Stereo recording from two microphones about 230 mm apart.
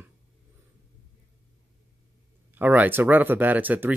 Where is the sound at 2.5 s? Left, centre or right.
Centre.